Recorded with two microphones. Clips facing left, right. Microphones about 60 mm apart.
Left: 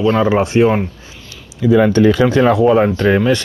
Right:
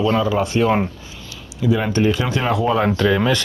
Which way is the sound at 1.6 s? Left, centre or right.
Left.